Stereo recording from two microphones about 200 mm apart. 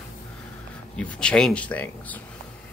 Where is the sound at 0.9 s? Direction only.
5° left (ahead or behind).